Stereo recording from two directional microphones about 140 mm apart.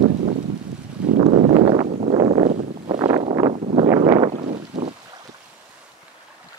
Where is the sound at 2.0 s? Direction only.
45° right (ahead or behind).